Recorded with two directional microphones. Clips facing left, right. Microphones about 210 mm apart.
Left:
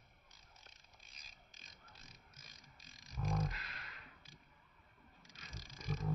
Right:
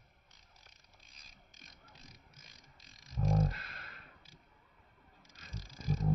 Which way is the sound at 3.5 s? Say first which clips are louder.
Right 4 dB; 45° right (ahead or behind).